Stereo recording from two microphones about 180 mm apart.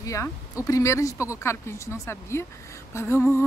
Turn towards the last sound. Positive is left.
turn(degrees=15)  # may be behind; listen again after turning